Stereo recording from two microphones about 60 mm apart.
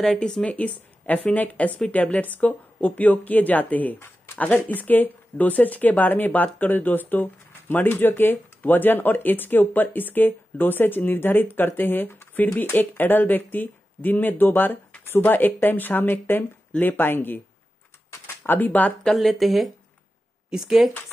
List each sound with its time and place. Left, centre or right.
0.0 s speech: centre
0.5 s speech: left
18.4 s speech: left
19.1 s speech: centre
20.4 s speech: centre